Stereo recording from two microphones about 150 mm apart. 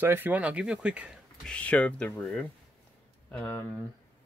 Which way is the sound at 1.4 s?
10° left (ahead or behind).